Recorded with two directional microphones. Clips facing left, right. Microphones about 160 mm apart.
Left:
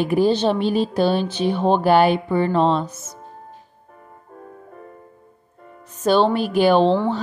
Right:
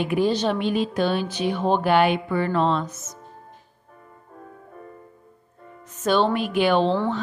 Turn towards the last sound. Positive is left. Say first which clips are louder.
# left 4 dB
turn(degrees=35)  # may be behind; listen again after turning